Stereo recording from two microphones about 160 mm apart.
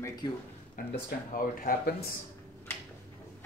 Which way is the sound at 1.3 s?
60° left (ahead or behind).